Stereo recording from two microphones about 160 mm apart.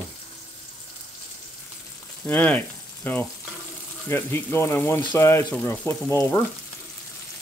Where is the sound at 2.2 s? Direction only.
10° left (ahead or behind).